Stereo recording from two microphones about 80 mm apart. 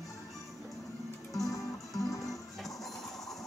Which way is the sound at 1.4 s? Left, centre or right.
Left.